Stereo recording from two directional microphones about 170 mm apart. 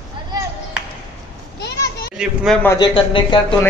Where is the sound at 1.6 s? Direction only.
75° left (ahead or behind).